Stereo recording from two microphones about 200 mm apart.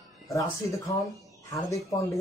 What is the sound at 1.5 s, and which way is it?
Speech, 15° left (ahead or behind).